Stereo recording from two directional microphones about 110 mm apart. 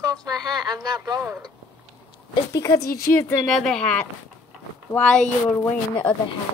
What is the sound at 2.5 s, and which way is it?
Speech, 30° left (ahead or behind).